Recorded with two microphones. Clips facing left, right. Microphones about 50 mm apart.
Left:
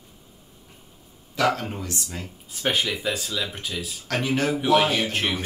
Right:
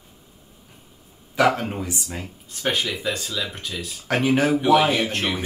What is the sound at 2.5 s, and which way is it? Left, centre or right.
Speech, centre.